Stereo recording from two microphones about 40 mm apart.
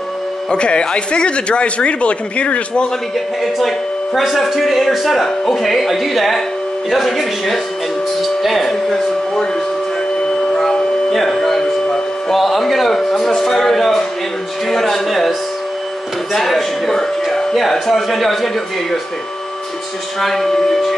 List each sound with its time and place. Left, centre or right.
0.5 s speech: left
3.5 s speech: centre
8.2 s music: centre
8.9 s a sound: centre
10.5 s dog: centre
11.1 s a sound: centre
14.7 s speech: centre
16.3 s speech: centre
20.2 s speech: centre